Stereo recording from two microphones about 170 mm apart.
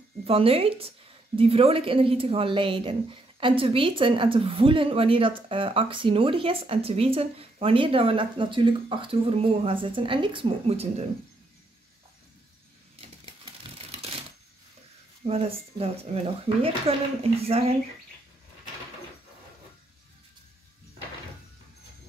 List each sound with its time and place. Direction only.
0.2 s a woman's voice: 35° right (ahead or behind)
15.2 s a woman's voice: 35° right (ahead or behind)